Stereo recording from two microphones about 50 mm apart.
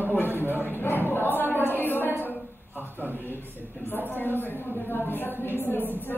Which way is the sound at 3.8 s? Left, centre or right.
Left.